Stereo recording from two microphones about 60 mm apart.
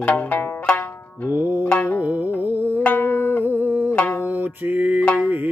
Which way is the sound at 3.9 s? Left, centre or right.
Left.